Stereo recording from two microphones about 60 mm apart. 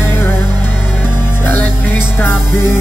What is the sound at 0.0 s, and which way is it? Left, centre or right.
Music, left.